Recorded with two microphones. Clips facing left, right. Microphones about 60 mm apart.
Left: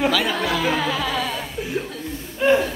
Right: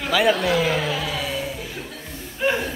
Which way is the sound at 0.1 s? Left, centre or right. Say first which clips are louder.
Right 3 dB; centre.